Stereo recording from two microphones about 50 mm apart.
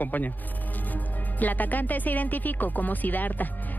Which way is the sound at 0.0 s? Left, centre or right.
Left.